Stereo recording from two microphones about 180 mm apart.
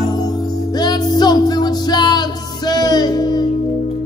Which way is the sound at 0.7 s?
20° left (ahead or behind).